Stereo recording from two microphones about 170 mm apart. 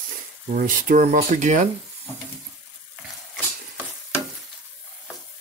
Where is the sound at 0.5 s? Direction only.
50° right (ahead or behind).